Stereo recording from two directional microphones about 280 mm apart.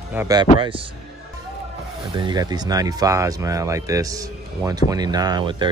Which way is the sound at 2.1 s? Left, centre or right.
Centre.